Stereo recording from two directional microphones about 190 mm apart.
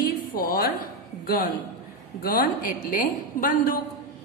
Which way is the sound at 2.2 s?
50° left (ahead or behind).